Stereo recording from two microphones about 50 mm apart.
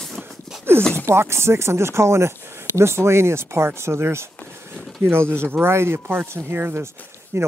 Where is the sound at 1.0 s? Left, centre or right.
Right.